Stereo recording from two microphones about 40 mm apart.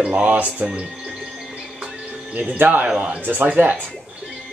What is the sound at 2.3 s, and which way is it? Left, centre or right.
Speech, right.